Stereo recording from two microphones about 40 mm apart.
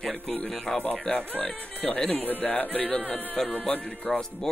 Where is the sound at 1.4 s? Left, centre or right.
Left.